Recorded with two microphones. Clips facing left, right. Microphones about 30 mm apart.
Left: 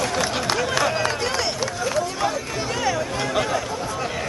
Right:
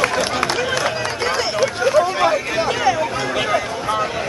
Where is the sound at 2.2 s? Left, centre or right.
Right.